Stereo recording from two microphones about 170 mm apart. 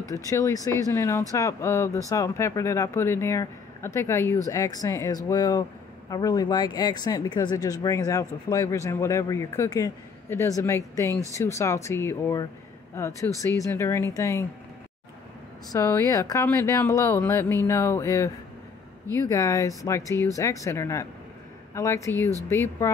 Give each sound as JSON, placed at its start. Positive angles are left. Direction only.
{"t": 0.1, "sound": "speech", "side_deg": 20}
{"t": 15.7, "sound": "speech", "side_deg": 20}